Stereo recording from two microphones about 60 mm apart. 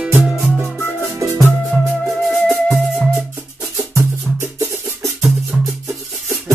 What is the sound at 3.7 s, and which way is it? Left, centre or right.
Music, right.